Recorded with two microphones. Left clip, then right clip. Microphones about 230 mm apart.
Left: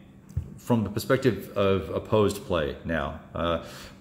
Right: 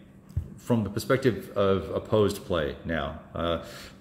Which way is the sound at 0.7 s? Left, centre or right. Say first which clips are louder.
Left 1 dB; centre.